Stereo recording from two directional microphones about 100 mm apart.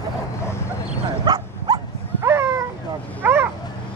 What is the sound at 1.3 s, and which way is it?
Dog, 45° right (ahead or behind).